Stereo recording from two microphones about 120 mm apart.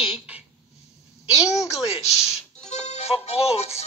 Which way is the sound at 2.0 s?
5° right (ahead or behind).